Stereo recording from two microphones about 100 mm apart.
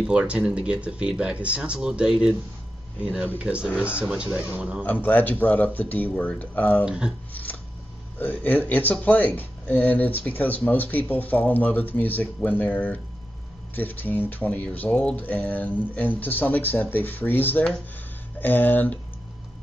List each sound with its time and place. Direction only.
0.0 s speech: 10° right (ahead or behind)
3.7 s speech: 20° left (ahead or behind)
4.0 s speech: 10° right (ahead or behind)
5.0 s speech: 15° left (ahead or behind)
6.8 s speech: 10° right (ahead or behind)
7.4 s scissors: 15° left (ahead or behind)
8.2 s speech: 15° left (ahead or behind)